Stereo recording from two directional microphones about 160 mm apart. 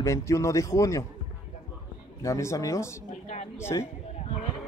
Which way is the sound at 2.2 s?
20° left (ahead or behind).